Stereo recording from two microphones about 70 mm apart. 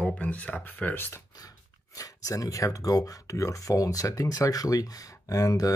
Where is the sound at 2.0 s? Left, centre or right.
Left.